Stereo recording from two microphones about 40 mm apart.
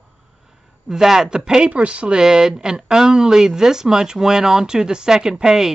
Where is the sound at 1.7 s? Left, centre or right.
Right.